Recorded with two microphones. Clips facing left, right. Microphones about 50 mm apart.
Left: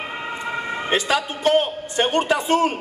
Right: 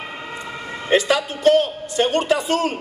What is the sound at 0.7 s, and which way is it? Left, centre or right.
A man's voice, left.